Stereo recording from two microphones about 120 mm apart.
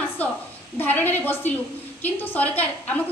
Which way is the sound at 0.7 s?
15° left (ahead or behind).